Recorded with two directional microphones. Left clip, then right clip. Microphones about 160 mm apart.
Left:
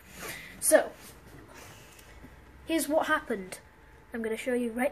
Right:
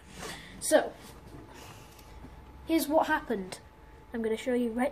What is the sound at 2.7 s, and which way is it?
A woman's voice, 30° right (ahead or behind).